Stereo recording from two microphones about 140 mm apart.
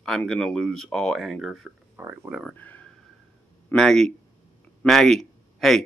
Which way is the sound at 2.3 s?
5° right (ahead or behind).